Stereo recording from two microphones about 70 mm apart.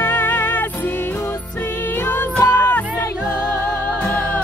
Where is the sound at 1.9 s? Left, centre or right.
Left.